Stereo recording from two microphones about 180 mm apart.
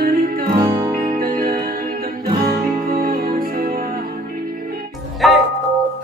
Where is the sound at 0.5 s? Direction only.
15° right (ahead or behind).